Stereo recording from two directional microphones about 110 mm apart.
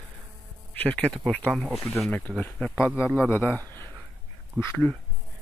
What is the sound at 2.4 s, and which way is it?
Speech, 10° left (ahead or behind).